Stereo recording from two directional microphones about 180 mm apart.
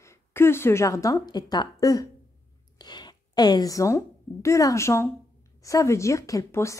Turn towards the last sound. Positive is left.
turn(degrees=15)  # may be behind; listen again after turning